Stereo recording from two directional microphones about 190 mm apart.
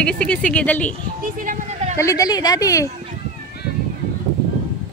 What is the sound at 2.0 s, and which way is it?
Speech, 15° left (ahead or behind).